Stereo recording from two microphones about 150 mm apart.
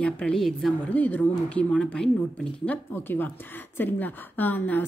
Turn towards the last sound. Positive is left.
turn(degrees=10)  # may be behind; listen again after turning